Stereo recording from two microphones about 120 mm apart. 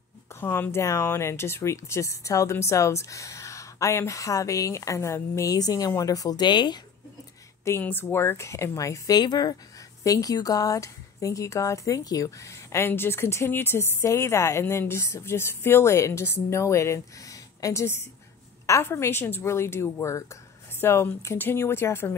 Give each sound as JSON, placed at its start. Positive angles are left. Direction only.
{"t": 0.4, "sound": "speech", "side_deg": 20}
{"t": 7.6, "sound": "speech", "side_deg": 20}